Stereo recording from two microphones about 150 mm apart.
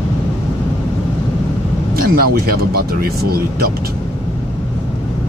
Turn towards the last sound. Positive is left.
turn(degrees=-85)